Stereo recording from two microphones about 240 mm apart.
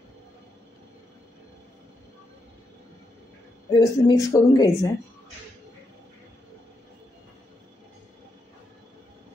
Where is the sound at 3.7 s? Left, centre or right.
Centre.